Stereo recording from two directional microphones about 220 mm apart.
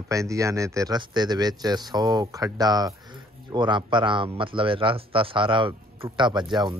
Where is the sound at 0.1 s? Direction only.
15° right (ahead or behind).